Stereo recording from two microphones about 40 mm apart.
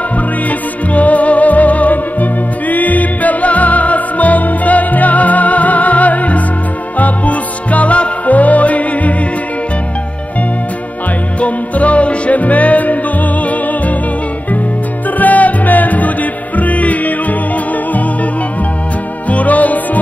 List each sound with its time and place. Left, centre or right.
0.5 s music: left
11.3 s music: left
15.1 s music: left
19.2 s music: left